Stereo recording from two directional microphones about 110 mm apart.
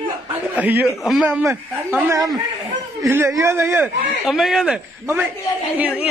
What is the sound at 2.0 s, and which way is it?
A man's voice, 30° right (ahead or behind).